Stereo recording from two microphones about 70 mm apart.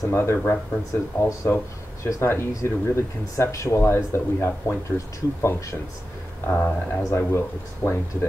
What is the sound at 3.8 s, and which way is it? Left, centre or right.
Speech, left.